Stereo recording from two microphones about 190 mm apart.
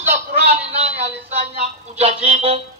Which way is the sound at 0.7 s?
35° right (ahead or behind).